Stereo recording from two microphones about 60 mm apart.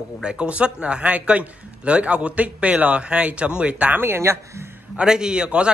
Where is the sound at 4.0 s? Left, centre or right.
Right.